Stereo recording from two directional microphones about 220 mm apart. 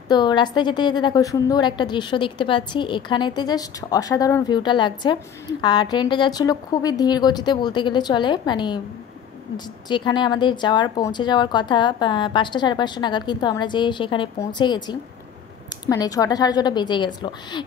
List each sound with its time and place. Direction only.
0.1 s a woman's voice: 20° left (ahead or behind)
9.8 s a woman's voice: 20° left (ahead or behind)